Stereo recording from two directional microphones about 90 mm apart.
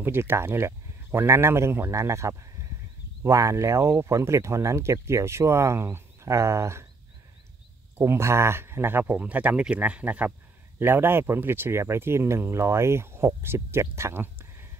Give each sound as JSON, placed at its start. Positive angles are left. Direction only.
{"t": 0.0, "sound": "speech", "side_deg": -25}
{"t": 8.0, "sound": "speech", "side_deg": -30}